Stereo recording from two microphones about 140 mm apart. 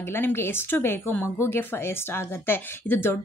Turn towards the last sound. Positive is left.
turn(degrees=15)  # may be behind; listen again after turning